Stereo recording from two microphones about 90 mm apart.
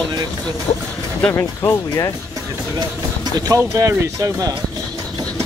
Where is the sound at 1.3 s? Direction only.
40° left (ahead or behind).